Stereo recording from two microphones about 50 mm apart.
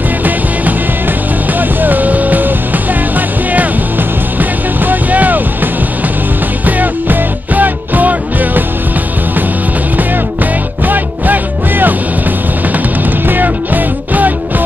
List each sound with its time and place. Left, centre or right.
1.6 s music: right
9.9 s music: right